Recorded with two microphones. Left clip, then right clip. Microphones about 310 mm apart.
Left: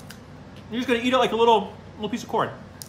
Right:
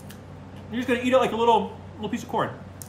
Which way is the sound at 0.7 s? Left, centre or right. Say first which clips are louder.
Left 1 dB; centre.